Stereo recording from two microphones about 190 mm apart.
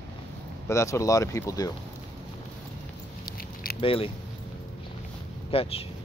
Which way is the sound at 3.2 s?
50° left (ahead or behind).